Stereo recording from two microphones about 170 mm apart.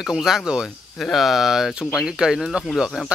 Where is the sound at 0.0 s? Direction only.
Centre (ahead or behind).